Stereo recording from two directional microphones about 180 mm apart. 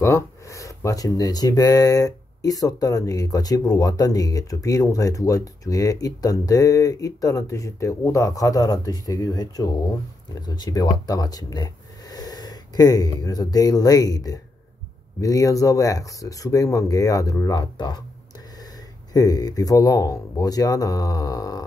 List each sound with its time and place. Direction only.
0.0 s speech: 15° left (ahead or behind)